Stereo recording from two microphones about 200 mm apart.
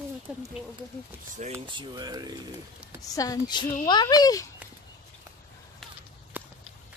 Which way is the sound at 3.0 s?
15° left (ahead or behind).